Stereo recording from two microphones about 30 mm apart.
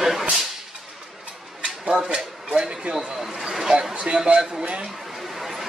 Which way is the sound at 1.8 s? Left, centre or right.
Right.